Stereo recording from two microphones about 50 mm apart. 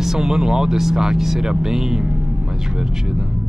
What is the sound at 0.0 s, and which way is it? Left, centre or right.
Speech, centre.